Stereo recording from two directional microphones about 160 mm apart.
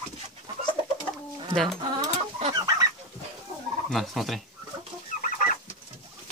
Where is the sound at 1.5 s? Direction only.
Centre (ahead or behind).